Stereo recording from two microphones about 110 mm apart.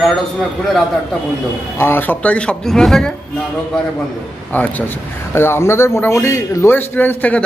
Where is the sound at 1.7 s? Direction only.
20° left (ahead or behind); by 3.1 s 5° left (ahead or behind).